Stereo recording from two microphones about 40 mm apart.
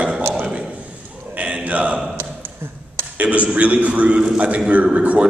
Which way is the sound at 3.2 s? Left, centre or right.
Right.